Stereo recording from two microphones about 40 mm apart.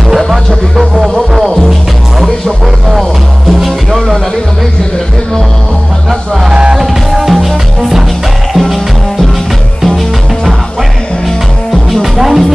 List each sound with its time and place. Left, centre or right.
0.7 s music: centre
6.0 s music: centre
6.5 s music: centre
6.8 s music: centre
11.9 s music: centre